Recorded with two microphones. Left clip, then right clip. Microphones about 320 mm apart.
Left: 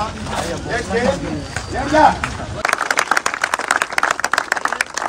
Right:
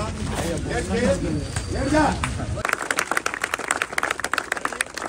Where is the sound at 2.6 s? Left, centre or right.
Left.